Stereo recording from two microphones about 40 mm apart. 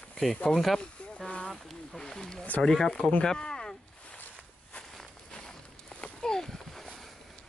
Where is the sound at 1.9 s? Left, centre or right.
Centre.